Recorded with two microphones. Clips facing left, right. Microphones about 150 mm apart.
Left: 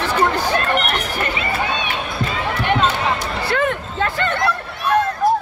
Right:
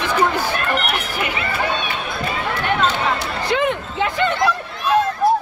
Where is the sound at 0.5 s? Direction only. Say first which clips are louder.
Left 2 dB; 10° right (ahead or behind).